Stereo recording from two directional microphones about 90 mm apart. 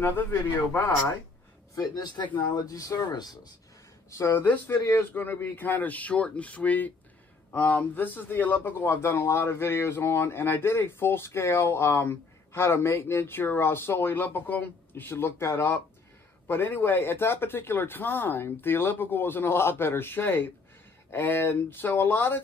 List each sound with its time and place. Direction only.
0.0 s a man's voice: 25° left (ahead or behind)
1.8 s speech: 50° left (ahead or behind)
4.1 s a man's voice: 30° left (ahead or behind)